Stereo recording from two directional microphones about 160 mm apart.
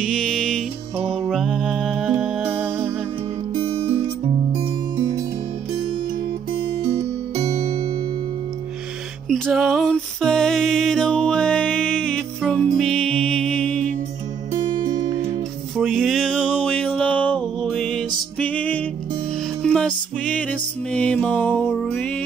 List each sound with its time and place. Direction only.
0.0 s music: 5° left (ahead or behind)
4.9 s music: 30° right (ahead or behind)
6.5 s music: 40° right (ahead or behind)
9.3 s music: centre (ahead or behind)
15.9 s music: centre (ahead or behind)